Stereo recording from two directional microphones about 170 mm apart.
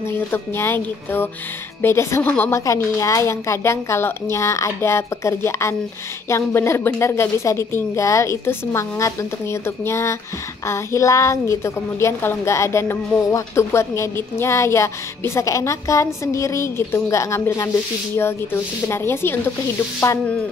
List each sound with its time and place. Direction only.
0.1 s a woman's voice: 15° left (ahead or behind)